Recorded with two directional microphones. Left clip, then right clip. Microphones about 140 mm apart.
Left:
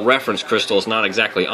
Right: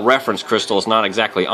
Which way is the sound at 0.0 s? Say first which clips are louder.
Right 1 dB; 25° right (ahead or behind).